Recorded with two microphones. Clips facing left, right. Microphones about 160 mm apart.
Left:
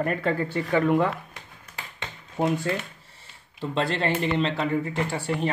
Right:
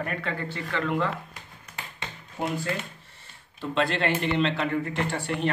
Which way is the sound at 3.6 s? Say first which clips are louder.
Even; 30° left (ahead or behind).